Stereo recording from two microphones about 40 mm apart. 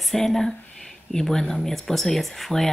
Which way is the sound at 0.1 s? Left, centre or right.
Centre.